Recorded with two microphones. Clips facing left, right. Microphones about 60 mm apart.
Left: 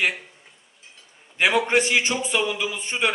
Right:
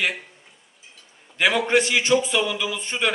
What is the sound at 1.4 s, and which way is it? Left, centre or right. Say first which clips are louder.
A man's voice: even; centre.